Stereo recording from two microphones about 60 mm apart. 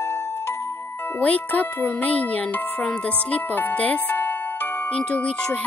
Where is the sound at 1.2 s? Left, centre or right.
Left.